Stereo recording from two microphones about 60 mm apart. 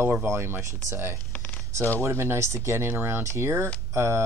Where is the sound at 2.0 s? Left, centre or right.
Right.